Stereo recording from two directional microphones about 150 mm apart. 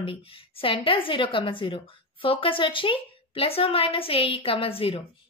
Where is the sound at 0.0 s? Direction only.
35° left (ahead or behind).